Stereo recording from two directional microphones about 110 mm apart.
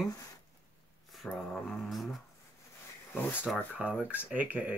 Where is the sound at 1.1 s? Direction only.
Centre (ahead or behind).